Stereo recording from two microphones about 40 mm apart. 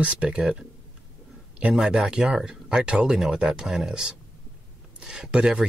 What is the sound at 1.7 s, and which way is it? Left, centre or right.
Speech, right.